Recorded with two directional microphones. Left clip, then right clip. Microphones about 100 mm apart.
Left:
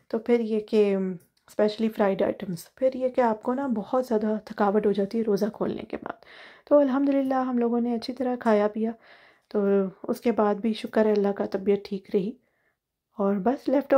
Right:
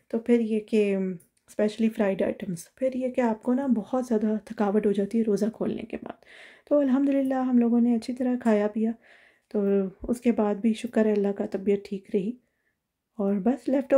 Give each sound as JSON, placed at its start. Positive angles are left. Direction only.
{"t": 0.1, "sound": "speech", "side_deg": -20}